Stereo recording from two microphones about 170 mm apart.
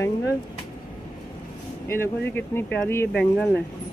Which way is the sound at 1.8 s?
15° left (ahead or behind).